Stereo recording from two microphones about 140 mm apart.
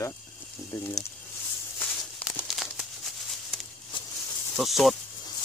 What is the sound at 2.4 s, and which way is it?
Crumpling, centre (ahead or behind).